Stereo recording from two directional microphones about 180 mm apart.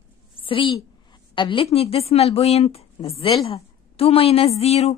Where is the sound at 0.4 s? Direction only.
30° left (ahead or behind).